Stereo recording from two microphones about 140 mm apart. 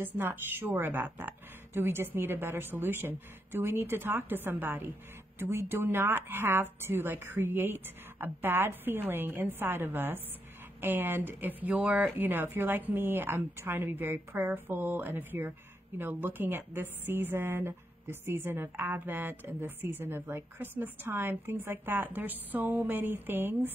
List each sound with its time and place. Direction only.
0.0 s a woman's voice: 15° right (ahead or behind)